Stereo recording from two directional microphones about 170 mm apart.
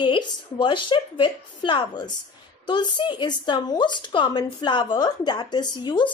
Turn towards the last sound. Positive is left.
turn(degrees=25)  # may be behind; listen again after turning